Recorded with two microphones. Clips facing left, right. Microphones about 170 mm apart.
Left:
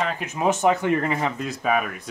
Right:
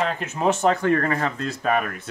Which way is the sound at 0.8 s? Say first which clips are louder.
Right 1 dB; 15° left (ahead or behind).